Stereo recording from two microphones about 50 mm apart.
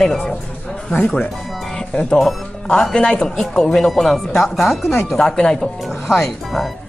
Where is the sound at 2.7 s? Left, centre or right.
Centre.